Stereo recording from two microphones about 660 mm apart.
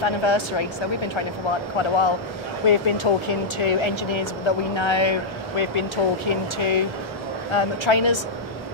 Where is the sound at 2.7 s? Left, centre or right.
Left.